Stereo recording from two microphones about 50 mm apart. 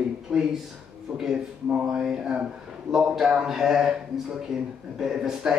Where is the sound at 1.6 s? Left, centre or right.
Right.